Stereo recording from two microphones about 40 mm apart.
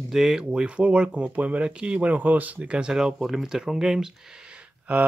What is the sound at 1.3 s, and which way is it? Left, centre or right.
Speech, right.